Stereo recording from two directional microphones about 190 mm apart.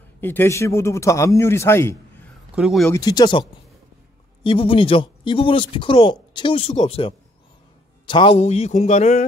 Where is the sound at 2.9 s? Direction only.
20° left (ahead or behind).